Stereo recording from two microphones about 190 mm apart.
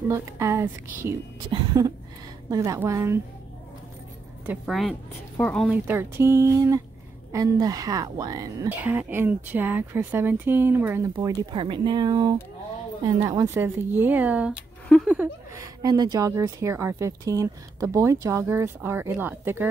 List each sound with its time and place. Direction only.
0.1 s speech: 15° right (ahead or behind)
4.5 s speech: centre (ahead or behind)
5.7 s speech: 10° right (ahead or behind)
11.1 s speech: 25° right (ahead or behind); by 14.5 s 10° right (ahead or behind)
14.9 s a sound: centre (ahead or behind)
15.5 s speech: 20° right (ahead or behind)